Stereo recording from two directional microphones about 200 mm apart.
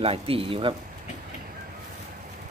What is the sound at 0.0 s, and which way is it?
Speech, 30° right (ahead or behind).